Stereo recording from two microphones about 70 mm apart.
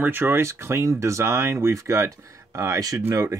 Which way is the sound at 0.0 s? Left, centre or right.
Right.